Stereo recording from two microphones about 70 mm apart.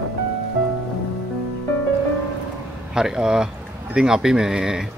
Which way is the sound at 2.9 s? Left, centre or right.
Centre.